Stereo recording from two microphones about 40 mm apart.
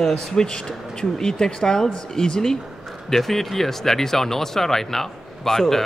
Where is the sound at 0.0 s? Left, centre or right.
Centre.